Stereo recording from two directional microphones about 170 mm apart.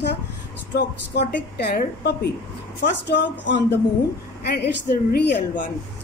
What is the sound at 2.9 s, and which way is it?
Speech, 90° left.